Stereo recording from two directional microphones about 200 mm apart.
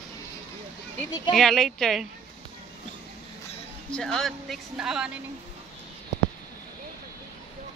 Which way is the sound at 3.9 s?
5° left (ahead or behind).